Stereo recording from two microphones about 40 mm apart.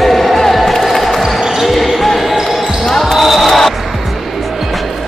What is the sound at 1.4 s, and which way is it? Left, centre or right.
Basketball bounce, centre.